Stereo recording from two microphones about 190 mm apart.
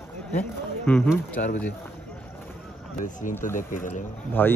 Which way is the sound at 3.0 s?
45° left (ahead or behind).